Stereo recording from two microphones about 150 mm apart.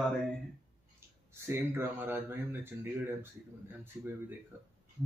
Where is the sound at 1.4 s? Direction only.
15° right (ahead or behind).